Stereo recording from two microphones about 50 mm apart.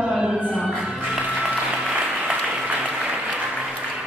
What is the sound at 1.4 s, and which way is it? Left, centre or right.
Applause, right.